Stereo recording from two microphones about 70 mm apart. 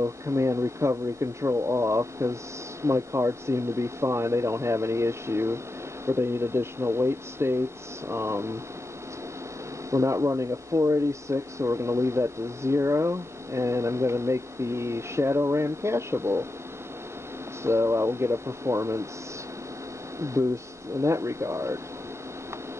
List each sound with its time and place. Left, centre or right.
0.0 s speech: right
9.8 s speech: right
17.6 s speech: right
20.2 s speech: right